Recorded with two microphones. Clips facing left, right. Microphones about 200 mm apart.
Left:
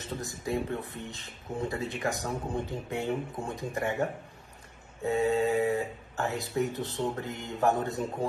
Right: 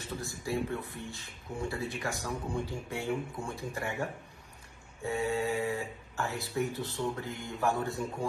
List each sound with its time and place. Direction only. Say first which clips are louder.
0.1 s speech: left 2 dB; 20° left (ahead or behind)